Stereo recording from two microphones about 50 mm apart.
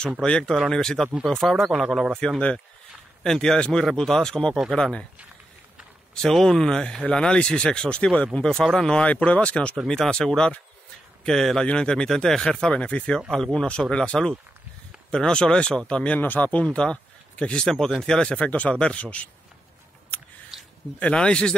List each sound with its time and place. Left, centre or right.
0.2 s a man's voice: centre
3.3 s speech: centre
3.5 s speech: left
6.3 s speech: centre
9.0 s speech: left
9.8 s speech: centre
13.3 s speech: centre
17.6 s speech: centre
18.4 s speech: left
21.0 s speech: left